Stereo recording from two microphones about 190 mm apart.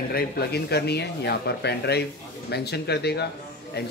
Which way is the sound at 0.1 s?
55° left (ahead or behind).